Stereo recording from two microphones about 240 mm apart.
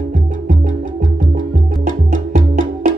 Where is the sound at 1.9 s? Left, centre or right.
Right.